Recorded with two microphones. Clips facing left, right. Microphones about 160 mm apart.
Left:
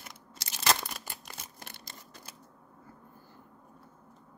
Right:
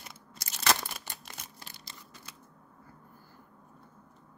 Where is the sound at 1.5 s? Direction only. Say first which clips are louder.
Left 2 dB; 55° left (ahead or behind).